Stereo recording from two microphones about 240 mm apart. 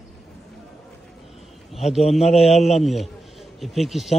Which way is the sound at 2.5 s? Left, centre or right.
Left.